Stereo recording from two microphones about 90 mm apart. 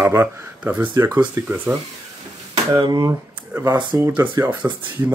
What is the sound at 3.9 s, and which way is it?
Speech, 30° right (ahead or behind).